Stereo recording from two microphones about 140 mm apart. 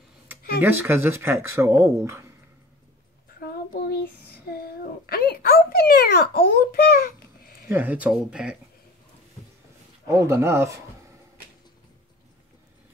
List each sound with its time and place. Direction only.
0.6 s speech: 15° right (ahead or behind)
3.3 s child singing: 90° left
4.5 s a sound: 90° left
7.6 s speech: 15° right (ahead or behind)
10.0 s speech: 20° right (ahead or behind)